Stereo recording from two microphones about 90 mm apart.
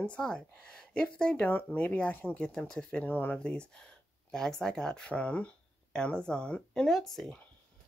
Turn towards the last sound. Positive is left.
turn(degrees=5)  # may be behind; listen again after turning